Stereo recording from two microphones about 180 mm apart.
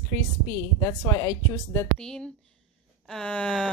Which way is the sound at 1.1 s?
20° left (ahead or behind).